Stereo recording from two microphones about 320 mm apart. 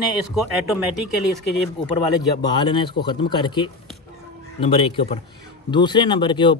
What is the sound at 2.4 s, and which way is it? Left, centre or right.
A man's voice, centre.